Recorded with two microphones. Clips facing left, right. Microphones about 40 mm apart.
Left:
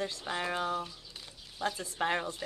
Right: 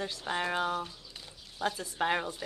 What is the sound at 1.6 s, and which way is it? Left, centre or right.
Speech, centre.